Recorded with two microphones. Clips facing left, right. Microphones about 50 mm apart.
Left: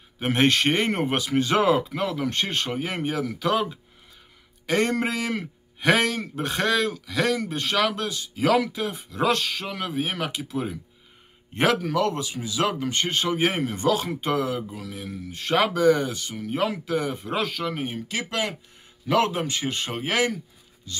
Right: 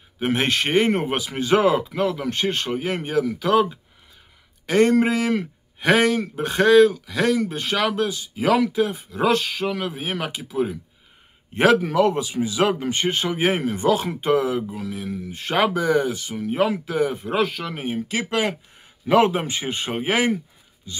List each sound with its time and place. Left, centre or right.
0.2 s a man's voice: centre
14.9 s speech: centre